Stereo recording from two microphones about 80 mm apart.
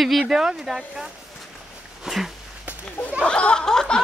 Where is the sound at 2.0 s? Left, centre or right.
Centre.